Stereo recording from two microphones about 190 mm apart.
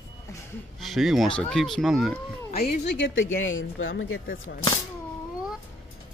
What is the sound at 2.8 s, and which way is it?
Speech, 80° left.